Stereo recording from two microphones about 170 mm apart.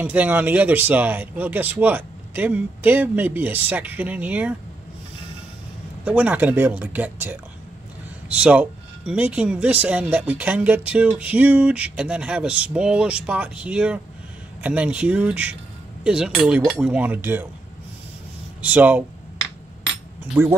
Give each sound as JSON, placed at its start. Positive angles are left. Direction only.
{"t": 0.0, "sound": "speech", "side_deg": -10}
{"t": 6.0, "sound": "speech", "side_deg": -10}
{"t": 8.4, "sound": "speech", "side_deg": -5}
{"t": 18.6, "sound": "speech", "side_deg": -10}
{"t": 20.4, "sound": "speech", "side_deg": -15}